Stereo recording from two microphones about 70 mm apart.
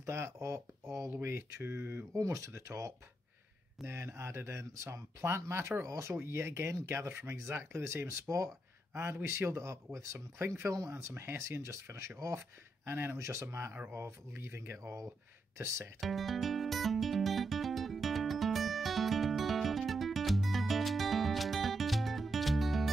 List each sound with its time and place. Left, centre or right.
0.0 s speech: right
2.1 s speech: right
16.0 s music: centre